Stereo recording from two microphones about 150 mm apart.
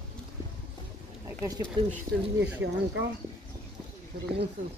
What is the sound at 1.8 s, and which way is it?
Speech, 30° right (ahead or behind).